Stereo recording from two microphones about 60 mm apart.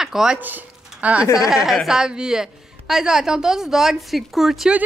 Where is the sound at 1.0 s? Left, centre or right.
Right.